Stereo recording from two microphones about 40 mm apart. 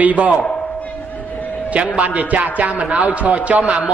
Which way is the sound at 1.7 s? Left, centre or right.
Right.